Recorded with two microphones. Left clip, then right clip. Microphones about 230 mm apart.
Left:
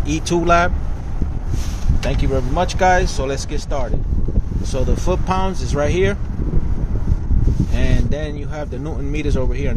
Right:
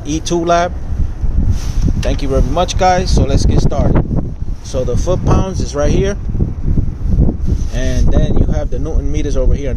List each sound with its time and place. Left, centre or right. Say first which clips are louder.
0.1 s speech: right 2 dB; centre
2.0 s speech: right 4 dB; right
4.7 s speech: right 5 dB; centre
7.7 s speech: right 6 dB; centre